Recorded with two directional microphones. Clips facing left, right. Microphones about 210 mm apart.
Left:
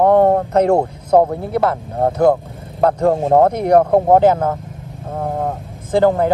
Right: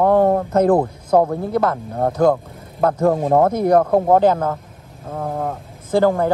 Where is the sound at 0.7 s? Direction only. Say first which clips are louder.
Left 2 dB; 30° left (ahead or behind).